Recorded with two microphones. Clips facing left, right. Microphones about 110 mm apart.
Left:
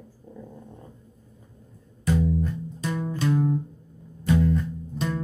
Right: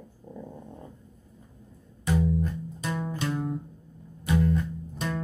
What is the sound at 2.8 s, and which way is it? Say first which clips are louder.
Music: left 2 dB; 20° right (ahead or behind).